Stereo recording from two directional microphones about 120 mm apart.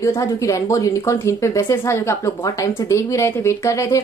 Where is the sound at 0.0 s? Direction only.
25° left (ahead or behind).